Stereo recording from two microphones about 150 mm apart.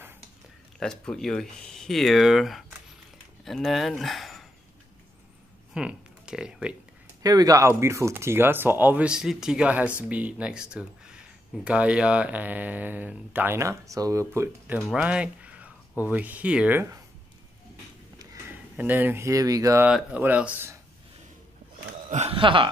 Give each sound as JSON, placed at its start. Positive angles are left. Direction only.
{"t": 0.7, "sound": "speech", "side_deg": 5}
{"t": 5.8, "sound": "speech", "side_deg": -5}
{"t": 7.2, "sound": "speech", "side_deg": -25}
{"t": 14.9, "sound": "speech", "side_deg": -5}
{"t": 18.5, "sound": "speech", "side_deg": -10}
{"t": 19.9, "sound": "speech", "side_deg": -10}
{"t": 22.1, "sound": "speech", "side_deg": -40}